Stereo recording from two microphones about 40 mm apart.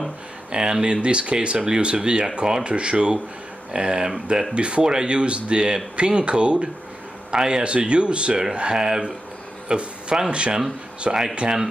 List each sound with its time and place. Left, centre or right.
0.5 s speech: centre
9.7 s a sound: right
10.3 s speech: right